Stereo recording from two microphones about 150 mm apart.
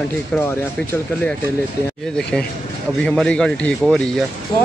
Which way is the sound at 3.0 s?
5° left (ahead or behind).